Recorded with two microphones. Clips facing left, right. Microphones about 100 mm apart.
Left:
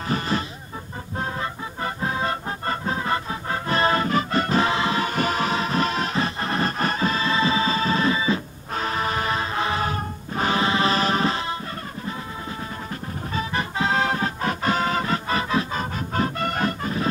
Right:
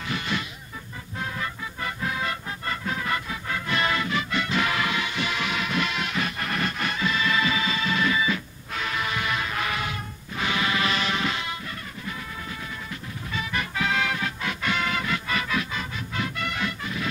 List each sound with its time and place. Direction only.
0.1 s speech: 40° left (ahead or behind)
1.1 s music: 35° left (ahead or behind)
13.3 s music: 35° left (ahead or behind)